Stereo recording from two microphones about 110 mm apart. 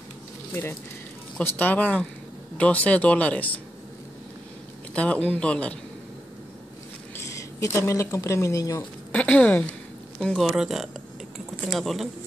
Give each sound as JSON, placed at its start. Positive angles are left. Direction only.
{"t": 0.5, "sound": "speech", "side_deg": 20}
{"t": 4.9, "sound": "speech", "side_deg": 10}
{"t": 7.2, "sound": "speech", "side_deg": 25}
{"t": 9.1, "sound": "speech", "side_deg": 10}